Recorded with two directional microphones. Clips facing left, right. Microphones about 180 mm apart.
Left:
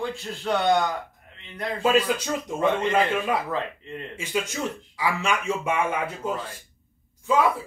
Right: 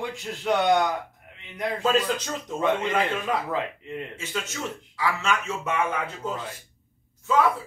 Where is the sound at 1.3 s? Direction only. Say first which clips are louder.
Right 2 dB; 15° right (ahead or behind).